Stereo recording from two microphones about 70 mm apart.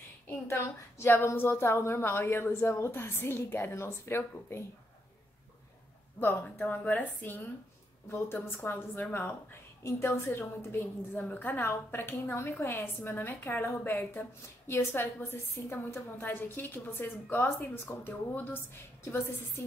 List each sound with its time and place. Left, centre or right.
0.3 s a woman's voice: left
6.1 s a woman's voice: left
9.8 s a woman's voice: left
11.1 s a woman's voice: left